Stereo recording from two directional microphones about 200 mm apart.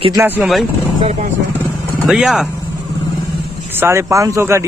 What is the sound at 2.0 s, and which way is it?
Speech, 5° right (ahead or behind).